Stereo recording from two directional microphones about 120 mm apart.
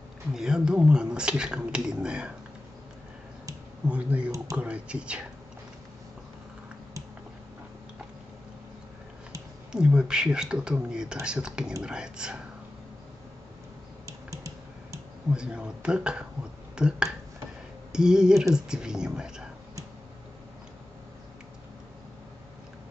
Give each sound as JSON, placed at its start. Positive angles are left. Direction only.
{"t": 0.3, "sound": "speech", "side_deg": -5}
{"t": 3.9, "sound": "speech", "side_deg": -10}
{"t": 4.6, "sound": "a sound", "side_deg": -10}
{"t": 9.7, "sound": "speech", "side_deg": -5}
{"t": 14.0, "sound": "typing", "side_deg": -25}
{"t": 15.3, "sound": "speech", "side_deg": -5}